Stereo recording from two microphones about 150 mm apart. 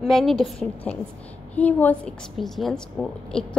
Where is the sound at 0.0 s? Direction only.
Centre (ahead or behind).